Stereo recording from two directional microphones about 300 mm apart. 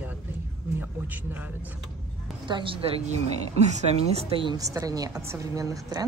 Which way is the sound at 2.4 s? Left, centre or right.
Centre.